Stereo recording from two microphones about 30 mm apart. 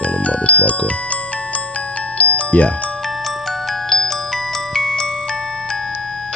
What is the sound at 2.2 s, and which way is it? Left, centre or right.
Glockenspiel, left.